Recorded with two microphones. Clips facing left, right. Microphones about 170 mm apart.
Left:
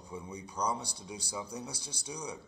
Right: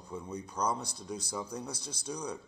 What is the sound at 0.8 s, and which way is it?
Speech, 70° left (ahead or behind).